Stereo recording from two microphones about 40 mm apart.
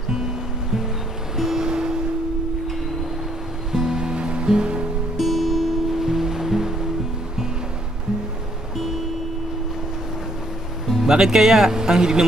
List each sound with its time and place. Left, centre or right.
1.3 s music: centre
1.7 s a sound: centre
3.7 s music: centre
5.1 s music: centre
6.0 s music: centre
11.1 s speech: centre